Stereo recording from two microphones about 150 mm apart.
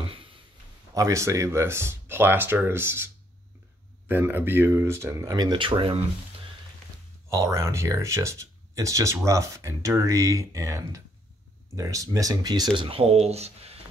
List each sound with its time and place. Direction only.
0.9 s speech: 20° right (ahead or behind)
4.1 s speech: 15° right (ahead or behind); by 5.9 s 35° right (ahead or behind)
7.2 s speech: 20° right (ahead or behind); by 13.7 s 45° right (ahead or behind)